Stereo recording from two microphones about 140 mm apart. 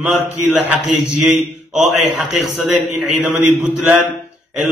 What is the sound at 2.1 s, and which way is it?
A man's voice, centre (ahead or behind).